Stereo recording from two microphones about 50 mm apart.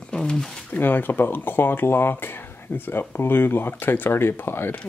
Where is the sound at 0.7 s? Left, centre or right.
Left.